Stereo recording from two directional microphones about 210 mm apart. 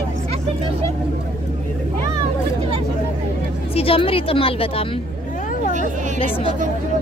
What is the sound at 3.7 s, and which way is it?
Speech, 25° left (ahead or behind).